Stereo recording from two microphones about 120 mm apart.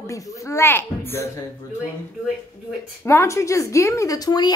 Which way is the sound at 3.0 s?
25° left (ahead or behind).